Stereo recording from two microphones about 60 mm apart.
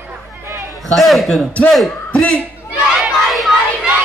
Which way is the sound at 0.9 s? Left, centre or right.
Centre.